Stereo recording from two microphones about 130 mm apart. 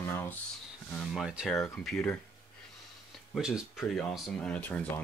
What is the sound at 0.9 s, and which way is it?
Speech, centre (ahead or behind).